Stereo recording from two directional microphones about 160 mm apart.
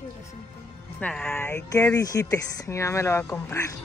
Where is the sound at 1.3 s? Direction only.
15° left (ahead or behind).